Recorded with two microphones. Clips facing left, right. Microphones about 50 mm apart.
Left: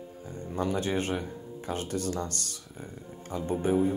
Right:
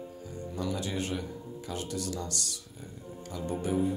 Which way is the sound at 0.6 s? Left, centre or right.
Left.